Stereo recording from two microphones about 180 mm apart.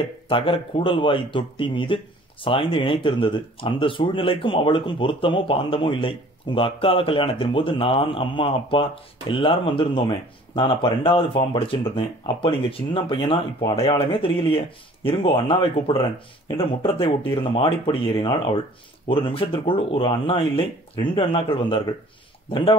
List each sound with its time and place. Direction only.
0.3 s speech: 30° left (ahead or behind)